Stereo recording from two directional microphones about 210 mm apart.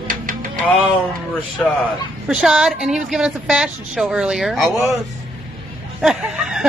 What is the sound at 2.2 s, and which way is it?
Snicker, 5° right (ahead or behind).